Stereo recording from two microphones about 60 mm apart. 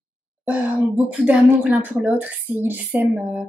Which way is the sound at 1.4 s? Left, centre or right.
Right.